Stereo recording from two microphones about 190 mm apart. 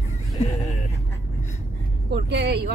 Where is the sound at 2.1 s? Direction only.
60° right (ahead or behind).